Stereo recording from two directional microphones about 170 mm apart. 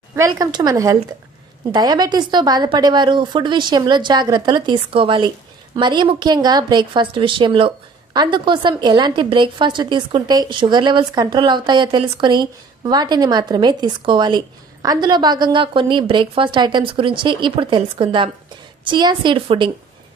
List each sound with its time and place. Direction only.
0.1 s a woman's voice: 20° right (ahead or behind)